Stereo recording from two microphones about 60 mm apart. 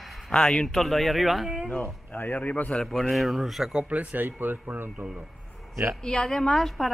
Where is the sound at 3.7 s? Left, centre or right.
Right.